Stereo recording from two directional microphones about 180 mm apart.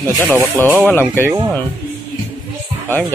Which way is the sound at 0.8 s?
10° left (ahead or behind).